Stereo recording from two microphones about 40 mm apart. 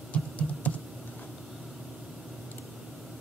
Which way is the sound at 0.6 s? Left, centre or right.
Left.